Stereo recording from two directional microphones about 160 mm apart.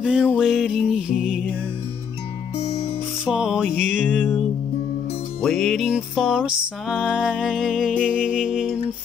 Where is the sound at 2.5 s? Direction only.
40° left (ahead or behind).